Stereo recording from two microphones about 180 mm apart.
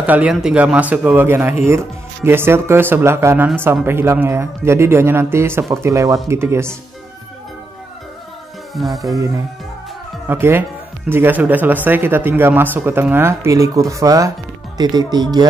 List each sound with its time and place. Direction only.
0.0 s speech: 10° right (ahead or behind)
8.7 s music: centre (ahead or behind)
9.1 s speech: 15° right (ahead or behind)